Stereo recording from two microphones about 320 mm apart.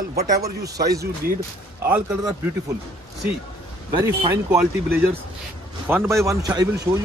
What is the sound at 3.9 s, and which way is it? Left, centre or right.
Speech, centre.